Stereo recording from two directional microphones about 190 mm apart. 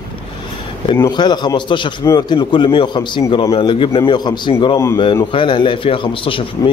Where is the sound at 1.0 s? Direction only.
20° left (ahead or behind).